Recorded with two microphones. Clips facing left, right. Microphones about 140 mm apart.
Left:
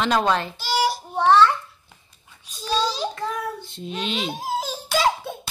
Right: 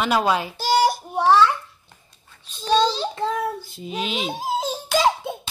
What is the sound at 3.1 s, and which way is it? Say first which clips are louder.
Speech: right 4 dB; 25° right (ahead or behind).